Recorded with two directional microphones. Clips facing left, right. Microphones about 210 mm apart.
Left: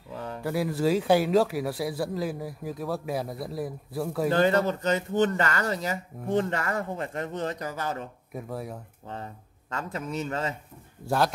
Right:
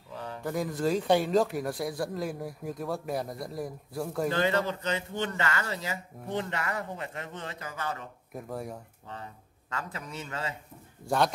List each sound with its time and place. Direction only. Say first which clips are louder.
0.4 s speech: left 3 dB; 5° left (ahead or behind)
4.3 s speech: left 6 dB; 45° left (ahead or behind)
8.3 s speech: even; centre (ahead or behind)
9.8 s a man's voice: left 7 dB; 40° left (ahead or behind)
11.0 s speech: left 2 dB; 5° left (ahead or behind)